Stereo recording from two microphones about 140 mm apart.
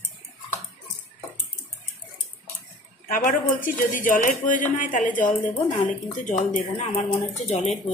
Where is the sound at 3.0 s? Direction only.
75° left (ahead or behind).